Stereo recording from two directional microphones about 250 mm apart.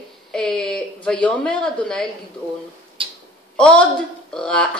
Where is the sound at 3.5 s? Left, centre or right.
Centre.